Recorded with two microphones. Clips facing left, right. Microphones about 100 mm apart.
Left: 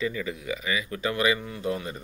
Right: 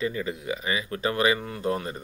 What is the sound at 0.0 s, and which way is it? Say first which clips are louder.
Speech: right 1 dB; 35° right (ahead or behind).